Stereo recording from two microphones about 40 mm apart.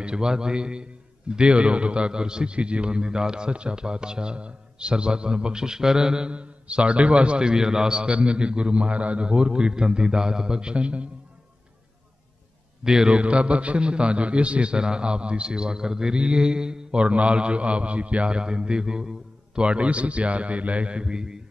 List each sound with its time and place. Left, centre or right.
0.0 s a man's voice: right
12.8 s a man's voice: centre
13.1 s a man's voice: right